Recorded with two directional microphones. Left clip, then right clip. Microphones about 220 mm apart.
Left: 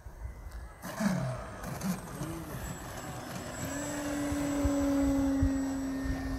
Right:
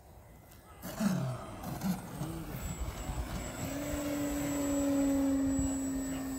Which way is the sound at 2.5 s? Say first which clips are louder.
Left 3 dB; 20° right (ahead or behind).